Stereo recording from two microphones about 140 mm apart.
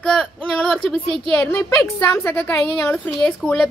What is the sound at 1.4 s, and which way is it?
Speech, 20° left (ahead or behind).